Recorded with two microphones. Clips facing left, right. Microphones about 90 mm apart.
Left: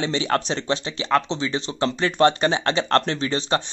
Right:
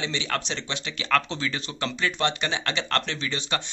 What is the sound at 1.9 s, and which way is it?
Speech, 35° left (ahead or behind).